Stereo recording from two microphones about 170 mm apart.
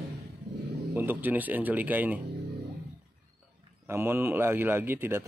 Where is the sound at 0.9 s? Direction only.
10° right (ahead or behind).